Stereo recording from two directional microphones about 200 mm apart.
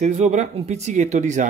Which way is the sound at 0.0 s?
35° right (ahead or behind).